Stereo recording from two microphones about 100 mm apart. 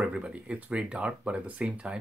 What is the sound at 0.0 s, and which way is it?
Speech, 10° right (ahead or behind).